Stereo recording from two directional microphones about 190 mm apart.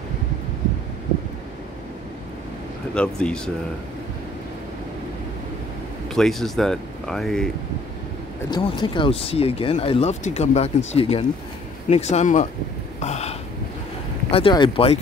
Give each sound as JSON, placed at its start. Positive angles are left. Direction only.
{"t": 2.9, "sound": "speech", "side_deg": 5}
{"t": 6.0, "sound": "speech", "side_deg": 0}
{"t": 8.5, "sound": "speech", "side_deg": 25}